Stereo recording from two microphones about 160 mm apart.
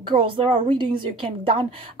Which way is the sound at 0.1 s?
35° right (ahead or behind).